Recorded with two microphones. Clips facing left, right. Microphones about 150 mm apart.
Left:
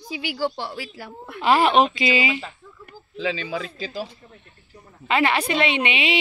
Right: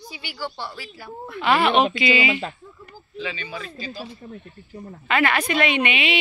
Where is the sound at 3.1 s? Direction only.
90° left.